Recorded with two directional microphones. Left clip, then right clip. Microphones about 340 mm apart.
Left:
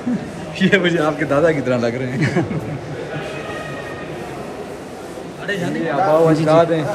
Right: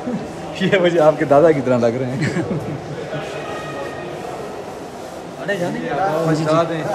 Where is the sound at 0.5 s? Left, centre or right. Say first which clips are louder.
Right 1 dB; right.